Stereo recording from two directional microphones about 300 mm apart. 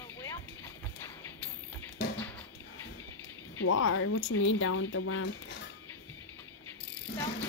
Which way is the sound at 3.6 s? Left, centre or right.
Left.